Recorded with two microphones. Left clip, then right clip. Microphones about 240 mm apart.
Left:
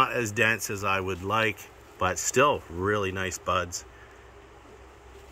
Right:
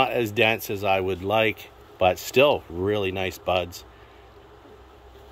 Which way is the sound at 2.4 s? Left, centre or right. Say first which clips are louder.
Right 3 dB; left.